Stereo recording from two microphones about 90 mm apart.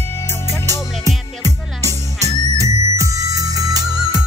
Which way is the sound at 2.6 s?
40° right (ahead or behind).